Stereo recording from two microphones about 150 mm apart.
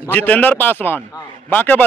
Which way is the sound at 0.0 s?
10° left (ahead or behind).